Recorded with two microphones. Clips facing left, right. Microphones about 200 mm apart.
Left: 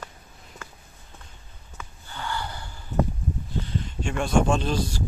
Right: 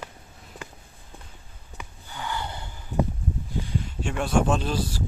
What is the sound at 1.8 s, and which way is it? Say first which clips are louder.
Snort: even; 15° right (ahead or behind).